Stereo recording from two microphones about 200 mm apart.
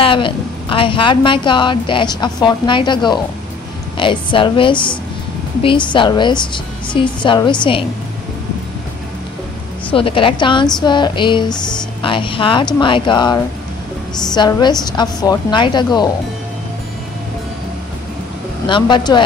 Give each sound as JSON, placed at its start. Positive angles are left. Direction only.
{"t": 0.0, "sound": "a woman's voice", "side_deg": 25}
{"t": 9.8, "sound": "a woman's voice", "side_deg": 25}
{"t": 18.7, "sound": "a woman's voice", "side_deg": 25}